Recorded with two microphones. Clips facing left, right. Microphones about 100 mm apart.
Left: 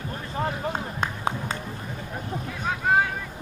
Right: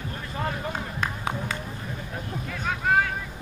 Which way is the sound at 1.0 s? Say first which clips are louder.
Left 1 dB; 30° left (ahead or behind).